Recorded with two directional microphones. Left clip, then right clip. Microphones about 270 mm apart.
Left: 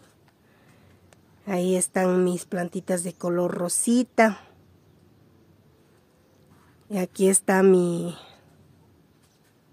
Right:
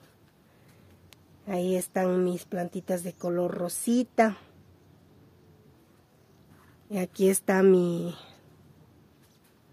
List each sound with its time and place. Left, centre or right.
1.4 s speech: left
6.9 s a woman's voice: centre